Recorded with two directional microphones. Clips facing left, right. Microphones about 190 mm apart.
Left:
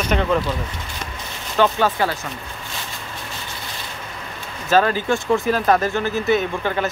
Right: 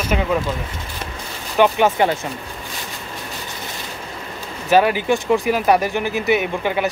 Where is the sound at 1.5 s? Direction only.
15° right (ahead or behind).